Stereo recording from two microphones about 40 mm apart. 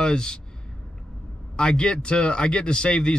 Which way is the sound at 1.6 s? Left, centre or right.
Left.